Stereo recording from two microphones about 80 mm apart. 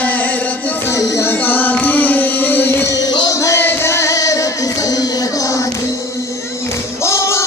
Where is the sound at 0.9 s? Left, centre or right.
Left.